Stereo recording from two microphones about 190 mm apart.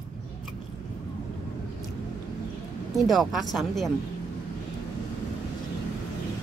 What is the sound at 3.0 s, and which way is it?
Speech, centre (ahead or behind).